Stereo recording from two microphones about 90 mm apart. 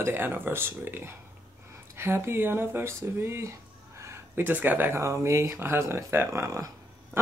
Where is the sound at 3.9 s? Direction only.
30° right (ahead or behind).